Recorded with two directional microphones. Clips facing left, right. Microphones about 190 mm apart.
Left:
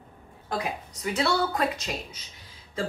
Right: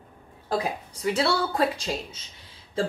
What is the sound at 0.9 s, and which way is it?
Speech, 30° right (ahead or behind).